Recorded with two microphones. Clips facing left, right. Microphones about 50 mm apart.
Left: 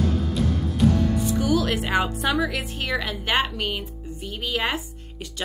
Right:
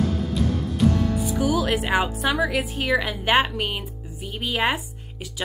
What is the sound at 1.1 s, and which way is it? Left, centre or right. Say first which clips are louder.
Speech: even; centre.